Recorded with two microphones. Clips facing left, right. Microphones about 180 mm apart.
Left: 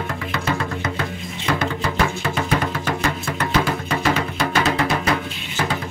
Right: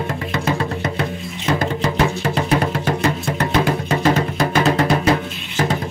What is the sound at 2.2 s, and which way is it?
Music, 35° right (ahead or behind).